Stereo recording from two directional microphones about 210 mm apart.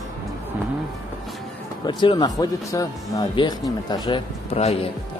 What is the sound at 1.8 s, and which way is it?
Speech, 20° left (ahead or behind).